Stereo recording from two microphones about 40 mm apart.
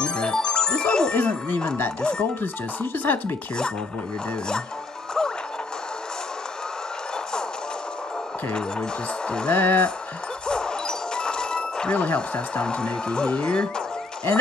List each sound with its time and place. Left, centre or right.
0.0 s music: left
1.1 s speech: left
2.0 s speech: left
2.4 s speech: left
9.5 s speech: left
10.4 s music: centre